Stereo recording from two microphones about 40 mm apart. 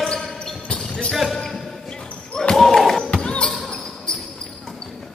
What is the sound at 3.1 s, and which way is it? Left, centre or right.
Basketball bounce, left.